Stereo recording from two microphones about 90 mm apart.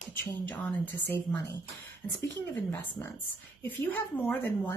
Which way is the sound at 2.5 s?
20° left (ahead or behind).